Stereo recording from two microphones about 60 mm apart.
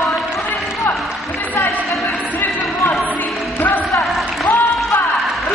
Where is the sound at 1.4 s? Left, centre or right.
Left.